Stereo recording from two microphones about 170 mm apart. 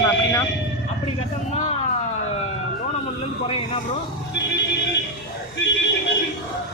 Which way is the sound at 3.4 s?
30° left (ahead or behind).